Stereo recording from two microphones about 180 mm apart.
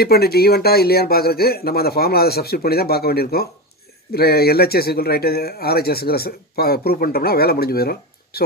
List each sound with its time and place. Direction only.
0.0 s speech: 60° left (ahead or behind)